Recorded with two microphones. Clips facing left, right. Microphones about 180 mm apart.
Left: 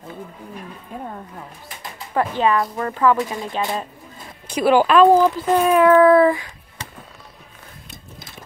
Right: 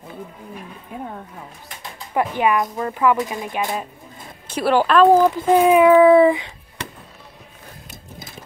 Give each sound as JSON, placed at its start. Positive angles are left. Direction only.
{"t": 2.1, "sound": "a child's voice", "side_deg": -15}
{"t": 4.6, "sound": "speech", "side_deg": 5}
{"t": 5.2, "sound": "a child's voice", "side_deg": -15}
{"t": 6.8, "sound": "basketball bounce", "side_deg": -65}